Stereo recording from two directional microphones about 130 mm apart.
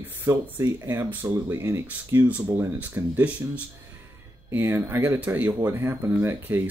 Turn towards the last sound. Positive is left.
turn(degrees=-15)  # may be behind; listen again after turning